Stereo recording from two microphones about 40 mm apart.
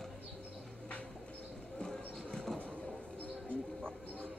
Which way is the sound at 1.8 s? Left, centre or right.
Centre.